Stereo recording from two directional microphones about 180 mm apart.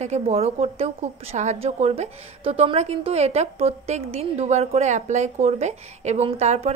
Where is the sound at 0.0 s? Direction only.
35° right (ahead or behind).